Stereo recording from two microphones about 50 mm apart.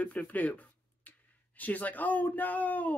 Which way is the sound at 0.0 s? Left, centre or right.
Left.